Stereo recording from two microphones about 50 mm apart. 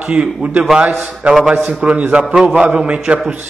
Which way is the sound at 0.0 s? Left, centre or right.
Centre.